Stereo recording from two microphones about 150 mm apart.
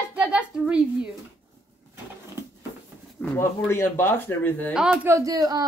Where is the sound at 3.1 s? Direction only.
15° left (ahead or behind).